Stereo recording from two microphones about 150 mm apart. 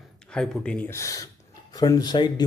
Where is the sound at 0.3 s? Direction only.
5° left (ahead or behind).